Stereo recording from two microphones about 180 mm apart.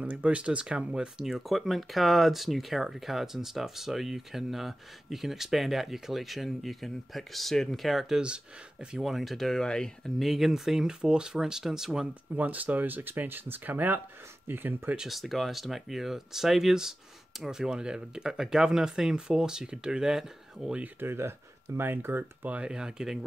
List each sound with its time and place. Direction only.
0.0 s speech: 5° right (ahead or behind)